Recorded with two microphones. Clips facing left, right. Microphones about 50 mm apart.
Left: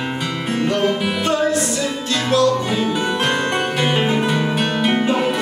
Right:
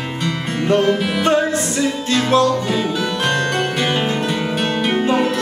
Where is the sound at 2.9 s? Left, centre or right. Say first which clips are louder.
Even; centre.